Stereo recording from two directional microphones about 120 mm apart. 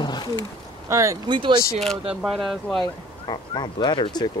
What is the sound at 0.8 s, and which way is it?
Speech, 25° right (ahead or behind).